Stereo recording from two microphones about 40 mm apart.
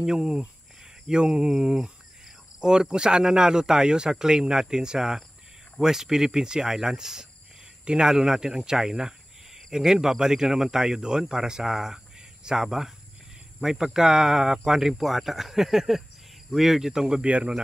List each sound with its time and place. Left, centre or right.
0.0 s speech: centre
17.2 s speech: right